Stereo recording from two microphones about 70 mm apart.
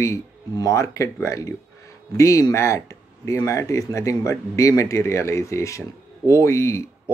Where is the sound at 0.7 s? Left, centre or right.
Left.